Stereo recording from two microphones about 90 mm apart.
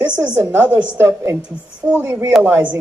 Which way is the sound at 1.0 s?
30° right (ahead or behind).